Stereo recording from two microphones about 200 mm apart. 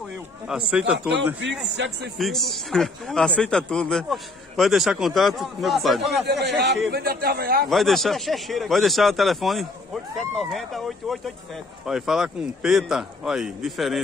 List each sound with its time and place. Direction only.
0.5 s a man's voice: 5° right (ahead or behind)
1.1 s a man's voice: 65° right (ahead or behind)
2.1 s a man's voice: centre (ahead or behind)
6.0 s a man's voice: 55° right (ahead or behind)
7.7 s a man's voice: centre (ahead or behind)